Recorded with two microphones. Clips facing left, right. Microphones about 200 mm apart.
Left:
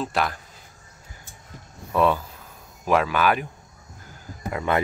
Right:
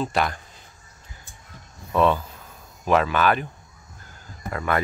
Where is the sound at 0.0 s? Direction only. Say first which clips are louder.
Right 1 dB; centre (ahead or behind).